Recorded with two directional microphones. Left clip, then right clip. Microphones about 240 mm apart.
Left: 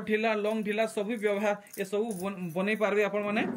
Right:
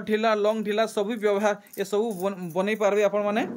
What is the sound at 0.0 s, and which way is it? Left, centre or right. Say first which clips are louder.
A man's voice: right 6 dB; centre.